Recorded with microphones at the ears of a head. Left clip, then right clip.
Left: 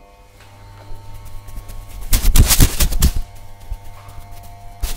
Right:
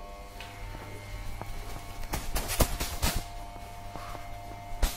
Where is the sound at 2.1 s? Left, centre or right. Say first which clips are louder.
Left 16 dB; left.